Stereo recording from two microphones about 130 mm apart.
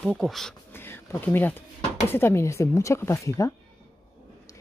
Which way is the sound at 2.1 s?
20° left (ahead or behind).